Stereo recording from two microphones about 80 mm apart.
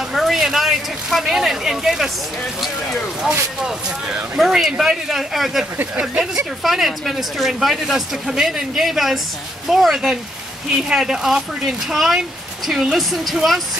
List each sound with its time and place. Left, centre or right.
0.1 s speech: centre
5.8 s speech: centre
6.6 s speech: centre